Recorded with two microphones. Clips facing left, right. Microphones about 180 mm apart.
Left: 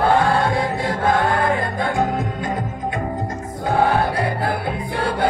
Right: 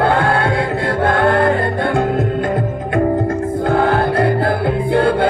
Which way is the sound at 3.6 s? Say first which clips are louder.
Right 2 dB; 55° right (ahead or behind).